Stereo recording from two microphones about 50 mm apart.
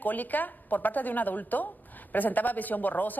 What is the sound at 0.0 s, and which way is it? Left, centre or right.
Speech, left.